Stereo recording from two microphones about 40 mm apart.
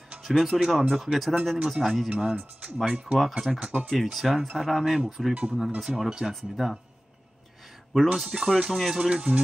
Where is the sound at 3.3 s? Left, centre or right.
Centre.